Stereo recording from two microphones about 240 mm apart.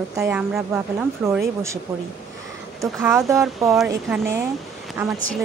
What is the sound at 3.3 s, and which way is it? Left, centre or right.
A woman's voice, centre.